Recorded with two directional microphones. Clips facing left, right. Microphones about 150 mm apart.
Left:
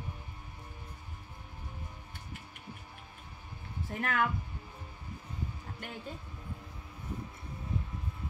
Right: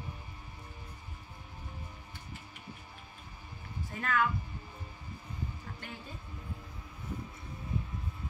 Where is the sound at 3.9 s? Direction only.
65° left (ahead or behind).